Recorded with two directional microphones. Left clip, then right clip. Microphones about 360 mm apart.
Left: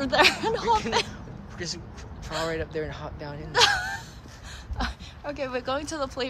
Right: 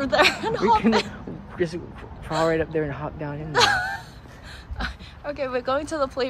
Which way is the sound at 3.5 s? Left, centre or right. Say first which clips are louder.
Right 2 dB; centre.